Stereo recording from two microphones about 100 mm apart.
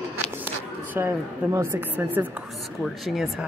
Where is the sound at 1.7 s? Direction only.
20° right (ahead or behind).